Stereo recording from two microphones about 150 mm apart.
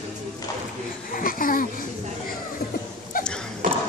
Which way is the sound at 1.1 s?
70° left (ahead or behind).